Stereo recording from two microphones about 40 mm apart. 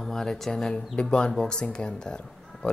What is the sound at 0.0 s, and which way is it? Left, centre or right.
Speech, centre.